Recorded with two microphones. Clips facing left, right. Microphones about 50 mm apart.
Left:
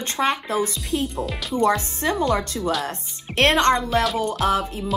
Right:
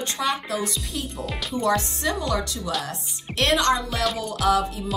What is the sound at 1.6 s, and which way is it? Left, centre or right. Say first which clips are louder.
A woman's voice: left 2 dB; left.